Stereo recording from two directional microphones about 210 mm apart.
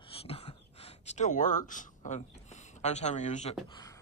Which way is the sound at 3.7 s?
20° left (ahead or behind).